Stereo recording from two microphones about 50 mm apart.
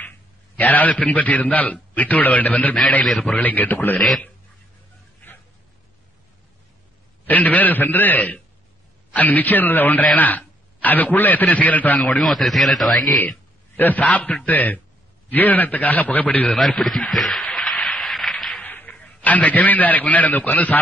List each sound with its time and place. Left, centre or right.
0.6 s a man's voice: left
7.2 s a man's voice: left
12.2 s speech: centre
13.7 s a man's voice: left
17.1 s speech: centre
17.5 s a sound: centre
18.0 s a sound: centre
18.5 s a sound: left
18.9 s a man's voice: left